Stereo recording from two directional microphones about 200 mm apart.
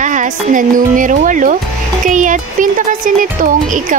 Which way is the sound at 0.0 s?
40° right (ahead or behind).